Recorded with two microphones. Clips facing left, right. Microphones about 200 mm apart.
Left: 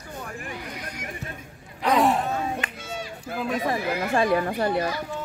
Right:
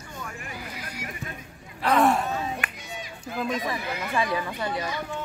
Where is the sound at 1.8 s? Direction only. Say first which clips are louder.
Even; 15° left (ahead or behind).